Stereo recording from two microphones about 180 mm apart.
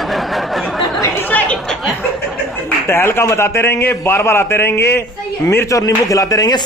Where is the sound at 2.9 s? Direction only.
15° left (ahead or behind).